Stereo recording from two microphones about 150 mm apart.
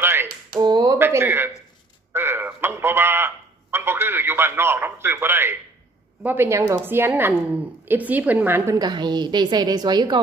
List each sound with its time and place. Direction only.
0.0 s a sound: 15° right (ahead or behind)
0.6 s a man's voice: 25° right (ahead or behind)
8.7 s a woman's voice: 30° right (ahead or behind)